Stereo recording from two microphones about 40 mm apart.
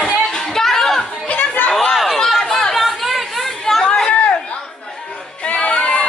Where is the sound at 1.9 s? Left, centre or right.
Centre.